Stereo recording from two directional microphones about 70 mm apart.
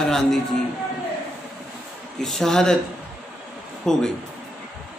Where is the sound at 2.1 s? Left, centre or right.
Centre.